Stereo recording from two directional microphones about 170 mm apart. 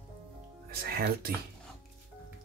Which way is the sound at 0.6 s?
65° right (ahead or behind).